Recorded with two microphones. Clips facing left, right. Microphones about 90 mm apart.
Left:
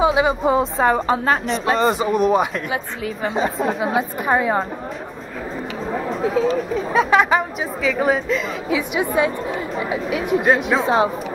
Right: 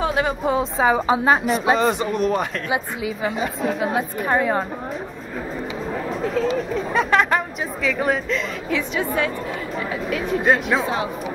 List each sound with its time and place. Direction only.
0.0 s speech: 5° left (ahead or behind)
3.3 s a woman's voice: 30° left (ahead or behind)
3.6 s speech: centre (ahead or behind)
6.0 s speech: centre (ahead or behind)